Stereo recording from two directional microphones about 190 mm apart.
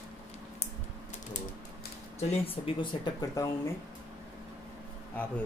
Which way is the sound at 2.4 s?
30° left (ahead or behind).